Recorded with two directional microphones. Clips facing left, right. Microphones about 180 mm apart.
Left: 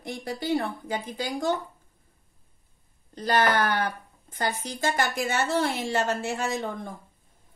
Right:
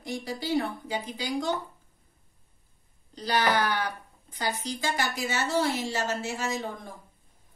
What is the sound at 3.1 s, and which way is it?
Speech, 50° left (ahead or behind).